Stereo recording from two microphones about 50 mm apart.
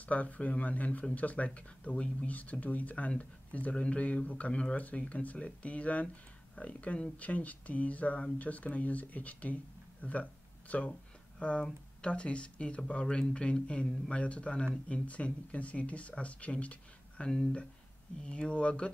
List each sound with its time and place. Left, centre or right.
0.0 s speech: left
17.2 s speech: centre